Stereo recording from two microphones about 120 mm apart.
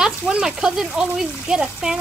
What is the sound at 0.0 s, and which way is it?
Speech, 5° right (ahead or behind).